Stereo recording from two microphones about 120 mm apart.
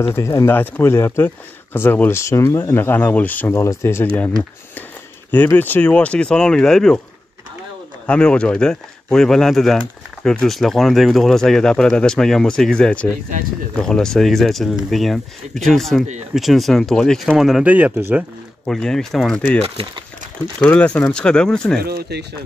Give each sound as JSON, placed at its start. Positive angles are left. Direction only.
{"t": 0.0, "sound": "speech", "side_deg": 25}
{"t": 5.3, "sound": "speech", "side_deg": 15}
{"t": 8.1, "sound": "speech", "side_deg": 10}
{"t": 18.7, "sound": "speech", "side_deg": 5}
{"t": 19.6, "sound": "speech", "side_deg": -50}
{"t": 20.6, "sound": "speech", "side_deg": 10}